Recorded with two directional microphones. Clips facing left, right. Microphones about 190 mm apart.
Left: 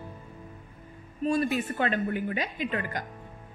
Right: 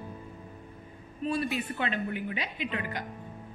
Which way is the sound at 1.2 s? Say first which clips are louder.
Left 4 dB; 45° left (ahead or behind).